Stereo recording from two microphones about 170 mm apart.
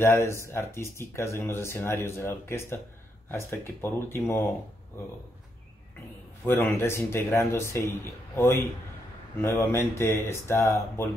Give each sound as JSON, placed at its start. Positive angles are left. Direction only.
{"t": 0.0, "sound": "speech", "side_deg": 15}
{"t": 6.4, "sound": "speech", "side_deg": 15}